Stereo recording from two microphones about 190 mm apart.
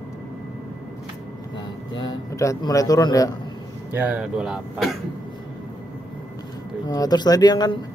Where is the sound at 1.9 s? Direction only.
20° left (ahead or behind).